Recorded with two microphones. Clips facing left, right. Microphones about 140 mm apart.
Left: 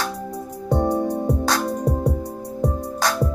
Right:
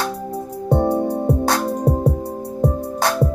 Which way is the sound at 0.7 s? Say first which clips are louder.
Right 3 dB; 55° right (ahead or behind).